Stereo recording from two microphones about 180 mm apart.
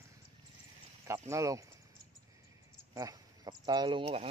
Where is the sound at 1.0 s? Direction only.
15° right (ahead or behind).